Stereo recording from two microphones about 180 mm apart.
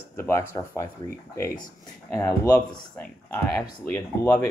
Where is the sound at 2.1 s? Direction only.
20° left (ahead or behind).